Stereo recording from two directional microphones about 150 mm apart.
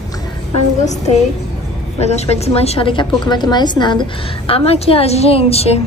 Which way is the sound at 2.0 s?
45° left (ahead or behind).